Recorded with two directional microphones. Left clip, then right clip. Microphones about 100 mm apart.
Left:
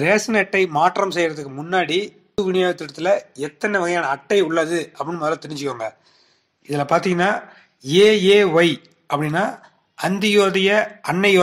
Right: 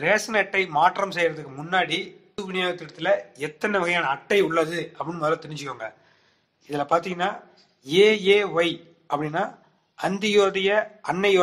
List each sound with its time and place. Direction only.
0.0 s a man's voice: 25° left (ahead or behind)
6.7 s speech: 35° left (ahead or behind)